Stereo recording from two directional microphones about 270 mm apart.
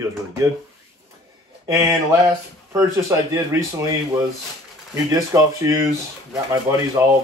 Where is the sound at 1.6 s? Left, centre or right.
Centre.